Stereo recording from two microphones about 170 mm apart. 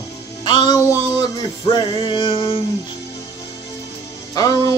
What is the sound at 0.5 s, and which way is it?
Male singing, 25° left (ahead or behind).